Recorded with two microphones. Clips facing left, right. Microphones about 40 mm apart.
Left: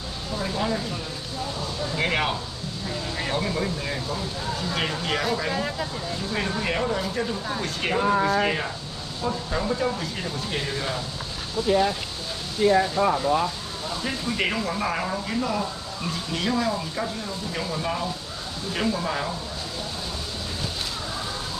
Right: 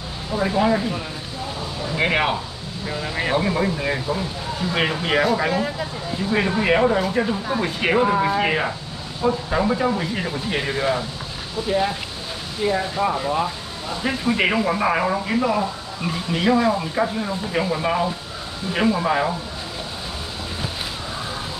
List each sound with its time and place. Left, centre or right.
0.3 s speech: right
6.1 s speech: right
12.9 s speech: centre